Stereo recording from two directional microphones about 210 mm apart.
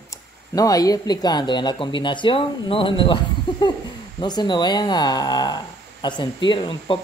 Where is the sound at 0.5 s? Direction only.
15° left (ahead or behind).